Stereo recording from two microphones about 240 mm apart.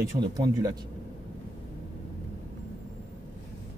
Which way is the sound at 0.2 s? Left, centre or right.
Centre.